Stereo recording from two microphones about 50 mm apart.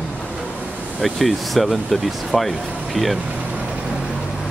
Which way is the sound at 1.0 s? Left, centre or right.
Centre.